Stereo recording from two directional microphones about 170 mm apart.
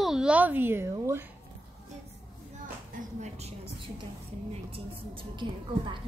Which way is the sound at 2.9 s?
40° right (ahead or behind).